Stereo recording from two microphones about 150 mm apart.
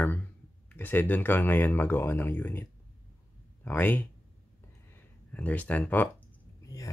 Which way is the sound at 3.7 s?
10° left (ahead or behind).